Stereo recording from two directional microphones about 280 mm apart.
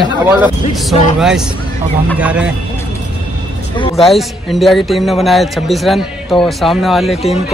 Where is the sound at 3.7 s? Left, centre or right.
Centre.